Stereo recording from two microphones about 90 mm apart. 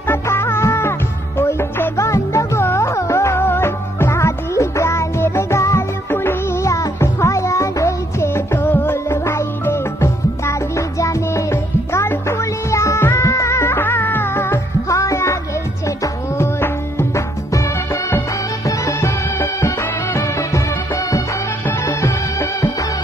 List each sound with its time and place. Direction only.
0.1 s music: 25° left (ahead or behind)
6.6 s music: 35° left (ahead or behind)
18.7 s music: 35° left (ahead or behind)